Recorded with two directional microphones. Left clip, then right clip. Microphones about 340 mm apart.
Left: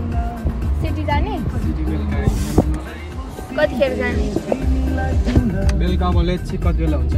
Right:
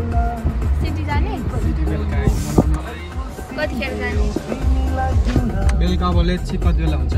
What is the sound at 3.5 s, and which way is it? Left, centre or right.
Speech, centre.